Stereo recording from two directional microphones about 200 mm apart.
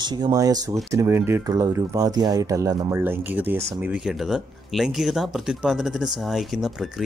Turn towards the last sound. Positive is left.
turn(degrees=0)  # may be behind; listen again after turning